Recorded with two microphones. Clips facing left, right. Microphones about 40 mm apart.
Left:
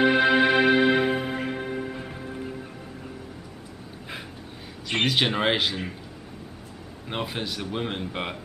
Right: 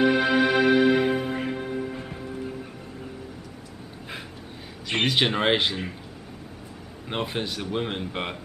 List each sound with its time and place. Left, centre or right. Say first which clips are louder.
0.0 s music: left 1 dB; left; by 2.5 s centre
4.8 s speech: even; centre
7.1 s speech: right 2 dB; centre